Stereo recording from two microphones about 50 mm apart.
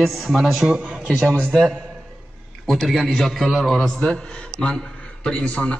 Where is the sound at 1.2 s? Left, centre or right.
Right.